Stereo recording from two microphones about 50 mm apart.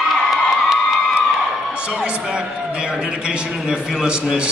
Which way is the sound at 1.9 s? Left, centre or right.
Centre.